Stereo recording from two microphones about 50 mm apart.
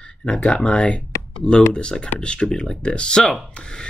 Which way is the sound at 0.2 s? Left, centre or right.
Left.